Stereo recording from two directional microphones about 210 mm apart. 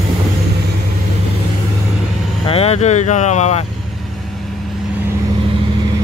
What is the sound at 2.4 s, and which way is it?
Speech, 30° left (ahead or behind).